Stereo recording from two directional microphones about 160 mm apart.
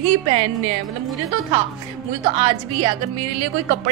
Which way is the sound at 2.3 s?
35° right (ahead or behind).